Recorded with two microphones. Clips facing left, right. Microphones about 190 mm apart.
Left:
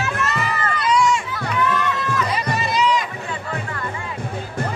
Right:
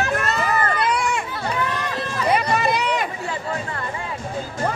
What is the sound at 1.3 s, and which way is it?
Run, 30° right (ahead or behind).